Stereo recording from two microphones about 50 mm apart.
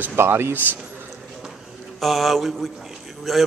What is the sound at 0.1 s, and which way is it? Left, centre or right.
Speech, right.